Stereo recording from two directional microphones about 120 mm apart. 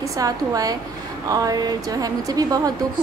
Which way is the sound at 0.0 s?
30° right (ahead or behind).